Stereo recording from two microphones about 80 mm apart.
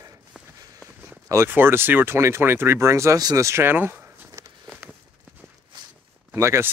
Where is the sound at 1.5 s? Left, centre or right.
Right.